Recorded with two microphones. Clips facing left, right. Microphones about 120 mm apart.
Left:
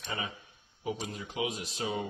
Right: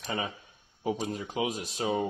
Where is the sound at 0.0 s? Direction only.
40° right (ahead or behind).